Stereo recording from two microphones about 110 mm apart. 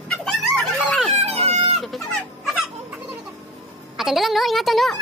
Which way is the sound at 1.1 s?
75° right (ahead or behind).